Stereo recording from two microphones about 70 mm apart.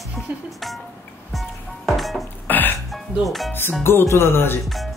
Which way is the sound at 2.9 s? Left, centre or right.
Centre.